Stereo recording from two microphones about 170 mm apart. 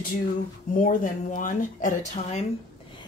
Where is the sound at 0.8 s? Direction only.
50° left (ahead or behind).